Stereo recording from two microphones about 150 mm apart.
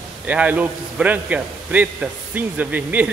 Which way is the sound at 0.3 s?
10° right (ahead or behind).